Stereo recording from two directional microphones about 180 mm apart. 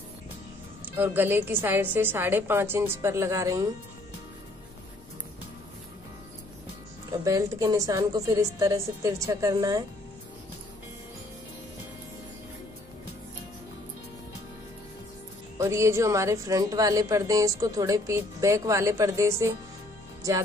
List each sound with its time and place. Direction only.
0.8 s a woman's voice: 10° right (ahead or behind)
7.1 s a woman's voice: 20° right (ahead or behind)
15.5 s a woman's voice: 15° right (ahead or behind)